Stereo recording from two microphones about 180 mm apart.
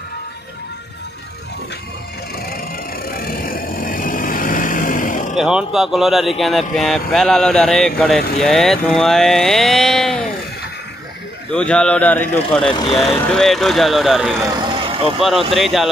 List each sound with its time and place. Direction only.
2.3 s wood: 55° left (ahead or behind)
3.1 s vehicle: 55° left (ahead or behind)
5.3 s speech: 5° right (ahead or behind)
11.5 s speech: 5° left (ahead or behind)
14.5 s vehicle: 25° right (ahead or behind)
15.1 s speech: centre (ahead or behind)